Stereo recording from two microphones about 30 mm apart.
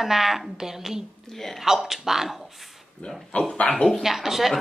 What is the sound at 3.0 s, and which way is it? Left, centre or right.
Speech, left.